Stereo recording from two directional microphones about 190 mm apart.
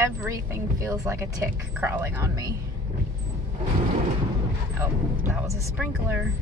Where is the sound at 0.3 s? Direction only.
15° right (ahead or behind).